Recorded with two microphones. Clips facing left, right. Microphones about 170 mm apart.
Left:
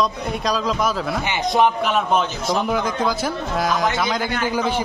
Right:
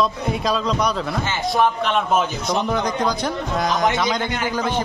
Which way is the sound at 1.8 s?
5° left (ahead or behind).